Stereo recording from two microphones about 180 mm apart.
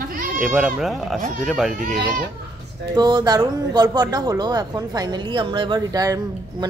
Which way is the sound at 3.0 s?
20° right (ahead or behind).